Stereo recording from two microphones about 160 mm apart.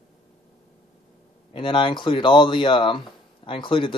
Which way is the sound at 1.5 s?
30° left (ahead or behind).